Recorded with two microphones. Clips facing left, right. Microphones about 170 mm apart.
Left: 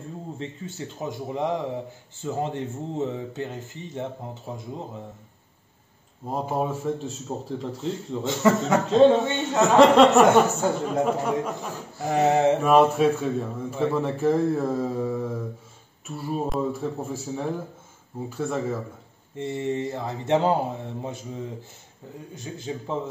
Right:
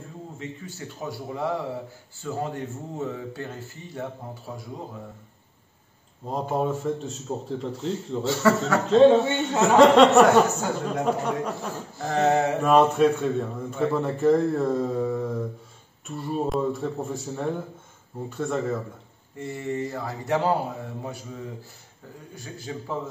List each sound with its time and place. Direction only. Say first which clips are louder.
0.4 s speech: left 2 dB; 20° left (ahead or behind)
6.3 s a man's voice: right 1 dB; centre (ahead or behind)
8.3 s speech: even; 20° left (ahead or behind)
8.8 s a man's voice: right 2 dB; centre (ahead or behind)
12.0 s a sound: left 2 dB; 15° left (ahead or behind)
12.5 s a man's voice: even; centre (ahead or behind)
19.3 s speech: left 3 dB; 20° left (ahead or behind)